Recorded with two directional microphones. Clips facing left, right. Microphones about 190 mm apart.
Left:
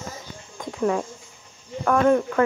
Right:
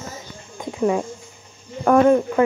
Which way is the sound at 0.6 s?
10° right (ahead or behind).